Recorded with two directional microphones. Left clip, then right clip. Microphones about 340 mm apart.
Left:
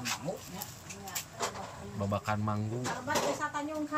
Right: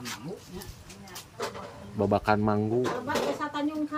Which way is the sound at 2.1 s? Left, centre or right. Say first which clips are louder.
Right 9 dB; centre.